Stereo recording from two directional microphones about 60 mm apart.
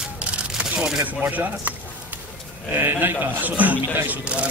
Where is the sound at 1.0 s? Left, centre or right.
Right.